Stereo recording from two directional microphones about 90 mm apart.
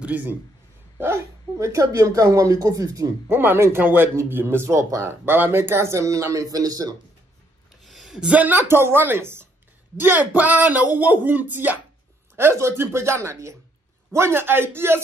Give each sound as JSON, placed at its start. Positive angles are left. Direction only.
{"t": 0.0, "sound": "a man's voice", "side_deg": -20}
{"t": 3.3, "sound": "speech", "side_deg": -25}
{"t": 5.2, "sound": "speech", "side_deg": -25}
{"t": 7.8, "sound": "speech", "side_deg": 0}